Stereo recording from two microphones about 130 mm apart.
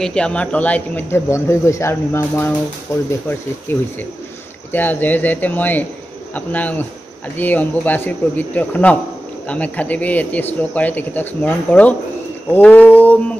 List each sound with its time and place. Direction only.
0.0 s speech: 5° left (ahead or behind)
3.7 s speech: 15° left (ahead or behind)